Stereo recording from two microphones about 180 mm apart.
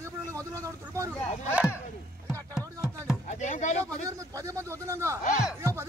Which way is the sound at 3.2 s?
40° left (ahead or behind).